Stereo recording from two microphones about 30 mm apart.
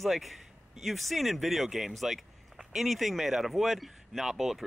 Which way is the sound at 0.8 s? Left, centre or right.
Centre.